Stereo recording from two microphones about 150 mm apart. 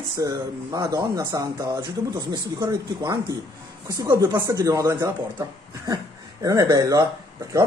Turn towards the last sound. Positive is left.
turn(degrees=-20)  # may be behind; listen again after turning